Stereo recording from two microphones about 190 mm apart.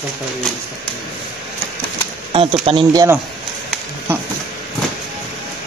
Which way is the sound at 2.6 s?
25° right (ahead or behind).